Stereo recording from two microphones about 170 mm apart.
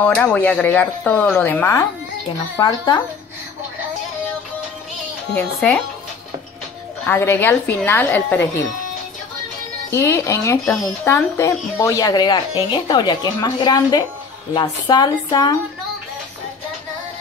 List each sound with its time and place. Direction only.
0.0 s speech: 10° left (ahead or behind)
2.6 s speech: 25° left (ahead or behind)
5.3 s speech: 5° left (ahead or behind)
7.1 s speech: 15° left (ahead or behind)
9.8 s speech: 15° left (ahead or behind)